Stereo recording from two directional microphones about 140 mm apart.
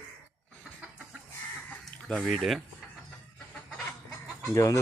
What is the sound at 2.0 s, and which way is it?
Speech, 5° left (ahead or behind).